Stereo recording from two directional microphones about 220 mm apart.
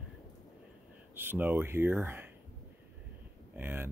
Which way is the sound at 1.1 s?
10° right (ahead or behind).